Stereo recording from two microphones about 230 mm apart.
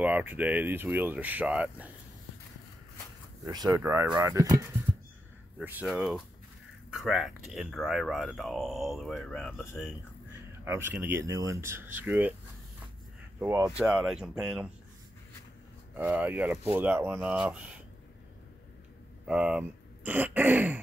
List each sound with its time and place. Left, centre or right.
0.0 s speech: centre
3.4 s speech: centre
10.6 s speech: centre
13.4 s speech: centre
15.9 s speech: centre
19.2 s speech: centre